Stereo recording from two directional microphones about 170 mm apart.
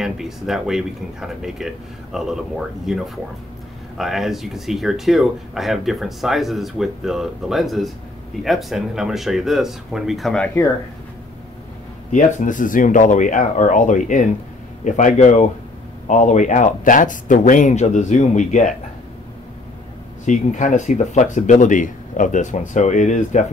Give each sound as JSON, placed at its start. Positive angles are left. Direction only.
{"t": 0.0, "sound": "speech", "side_deg": 0}
{"t": 4.0, "sound": "speech", "side_deg": 0}
{"t": 12.1, "sound": "speech", "side_deg": 45}
{"t": 20.2, "sound": "speech", "side_deg": 45}